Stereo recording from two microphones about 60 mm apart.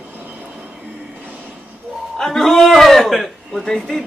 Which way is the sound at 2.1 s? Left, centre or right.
Centre.